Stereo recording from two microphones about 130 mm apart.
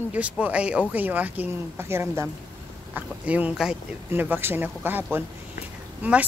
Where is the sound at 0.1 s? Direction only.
10° right (ahead or behind).